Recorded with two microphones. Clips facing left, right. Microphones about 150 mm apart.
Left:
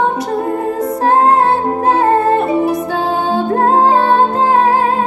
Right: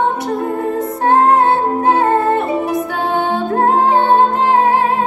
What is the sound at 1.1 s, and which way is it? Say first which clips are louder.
Music: even; 25° left (ahead or behind).